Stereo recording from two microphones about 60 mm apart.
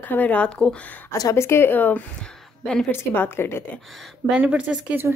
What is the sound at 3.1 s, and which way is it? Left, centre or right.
Speech, left.